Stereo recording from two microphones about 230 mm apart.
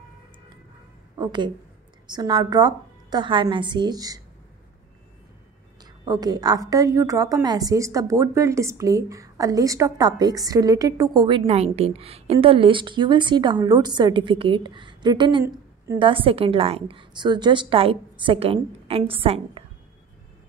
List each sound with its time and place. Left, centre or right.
1.1 s a woman's voice: centre
6.0 s a woman's voice: centre